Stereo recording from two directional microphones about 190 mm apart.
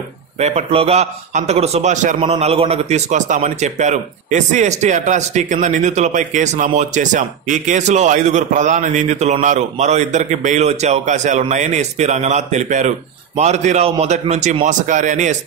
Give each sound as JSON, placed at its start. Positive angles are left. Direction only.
{"t": 0.4, "sound": "a man's voice", "side_deg": -35}